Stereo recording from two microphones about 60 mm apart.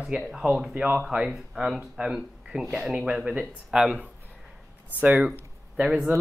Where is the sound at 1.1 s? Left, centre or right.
Right; by 2.9 s centre.